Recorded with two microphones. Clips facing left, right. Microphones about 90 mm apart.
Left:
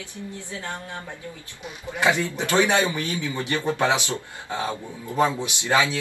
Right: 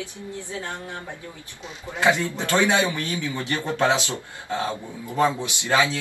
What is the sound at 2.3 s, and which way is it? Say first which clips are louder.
Speech: even; 20° left (ahead or behind).